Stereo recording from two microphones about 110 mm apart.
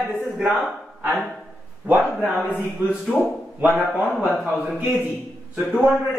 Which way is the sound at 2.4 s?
20° left (ahead or behind).